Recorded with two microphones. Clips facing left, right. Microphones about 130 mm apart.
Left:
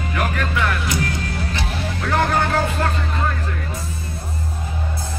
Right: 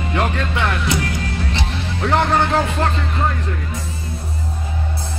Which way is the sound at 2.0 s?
30° right (ahead or behind).